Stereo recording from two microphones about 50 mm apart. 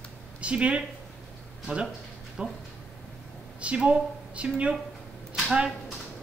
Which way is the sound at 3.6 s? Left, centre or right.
Right.